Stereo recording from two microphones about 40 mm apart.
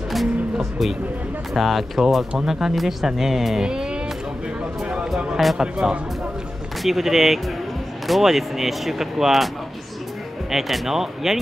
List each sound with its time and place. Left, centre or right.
0.1 s music: centre
1.5 s speech: centre
3.6 s music: right
5.6 s speech: centre
10.5 s speech: centre